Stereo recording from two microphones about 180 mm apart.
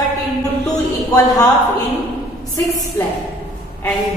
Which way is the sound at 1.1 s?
20° left (ahead or behind).